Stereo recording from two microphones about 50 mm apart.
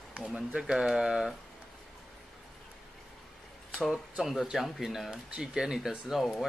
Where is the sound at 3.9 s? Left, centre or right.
Centre.